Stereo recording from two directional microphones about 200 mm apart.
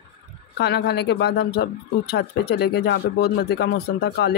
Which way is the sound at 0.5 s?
55° left (ahead or behind).